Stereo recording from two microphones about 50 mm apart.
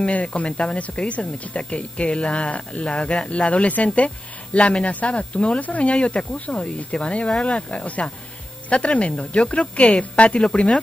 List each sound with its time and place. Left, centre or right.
0.0 s speech: left